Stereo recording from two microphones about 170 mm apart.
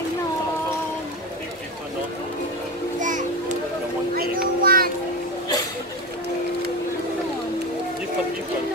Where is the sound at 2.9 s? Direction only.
45° right (ahead or behind).